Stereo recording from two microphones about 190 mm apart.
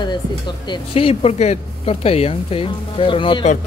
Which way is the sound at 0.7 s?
30° left (ahead or behind).